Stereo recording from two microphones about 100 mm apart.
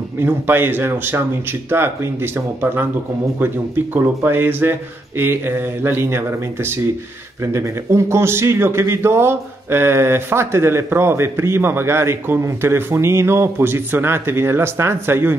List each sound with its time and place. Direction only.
0.2 s speech: 20° right (ahead or behind)
3.9 s speech: 20° right (ahead or behind)